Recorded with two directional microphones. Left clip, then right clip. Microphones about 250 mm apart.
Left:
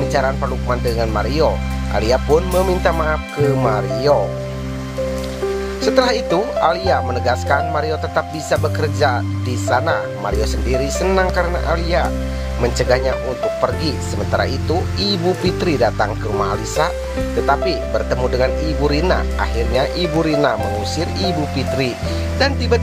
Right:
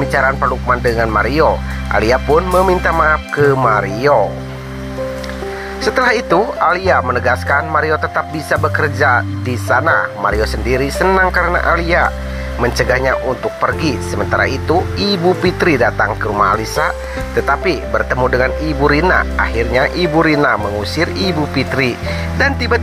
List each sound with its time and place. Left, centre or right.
0.1 s speech: centre
5.9 s speech: centre
22.4 s speech: centre